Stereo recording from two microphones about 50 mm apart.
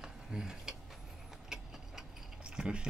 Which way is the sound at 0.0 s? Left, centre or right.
Centre.